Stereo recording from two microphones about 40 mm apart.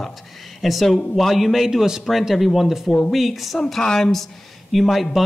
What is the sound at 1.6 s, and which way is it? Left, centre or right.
Speech, centre.